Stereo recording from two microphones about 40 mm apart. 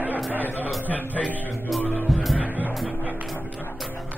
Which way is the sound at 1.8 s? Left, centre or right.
Left.